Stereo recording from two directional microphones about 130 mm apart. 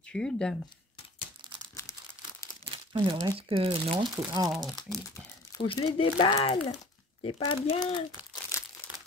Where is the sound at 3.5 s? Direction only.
45° right (ahead or behind); by 5.0 s 25° right (ahead or behind).